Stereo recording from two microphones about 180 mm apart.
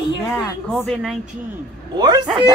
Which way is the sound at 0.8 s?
5° left (ahead or behind).